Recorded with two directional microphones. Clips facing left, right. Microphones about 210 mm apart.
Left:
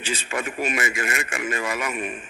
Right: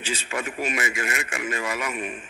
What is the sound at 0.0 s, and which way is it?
Speech, 50° left (ahead or behind).